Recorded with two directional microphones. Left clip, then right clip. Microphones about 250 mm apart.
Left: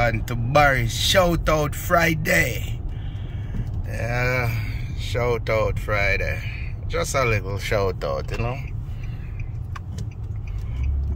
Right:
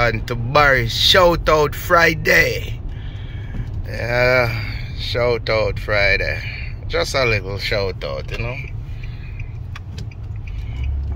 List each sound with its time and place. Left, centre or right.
0.0 s speech: centre